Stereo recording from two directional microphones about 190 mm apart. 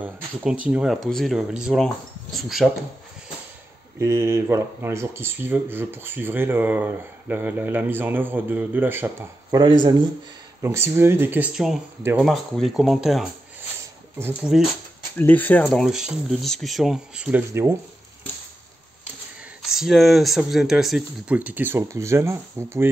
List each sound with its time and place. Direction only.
0.0 s a sound: 5° right (ahead or behind)
0.7 s speech: 5° right (ahead or behind)
4.0 s speech: 15° right (ahead or behind)
10.6 s speech: 15° right (ahead or behind)
12.3 s speech: centre (ahead or behind)
14.1 s speech: 10° right (ahead or behind)
15.1 s speech: 10° left (ahead or behind); by 17.7 s 15° right (ahead or behind)
19.6 s speech: centre (ahead or behind)